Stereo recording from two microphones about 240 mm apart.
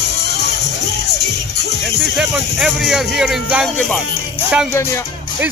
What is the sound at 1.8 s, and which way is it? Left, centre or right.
Speech, centre.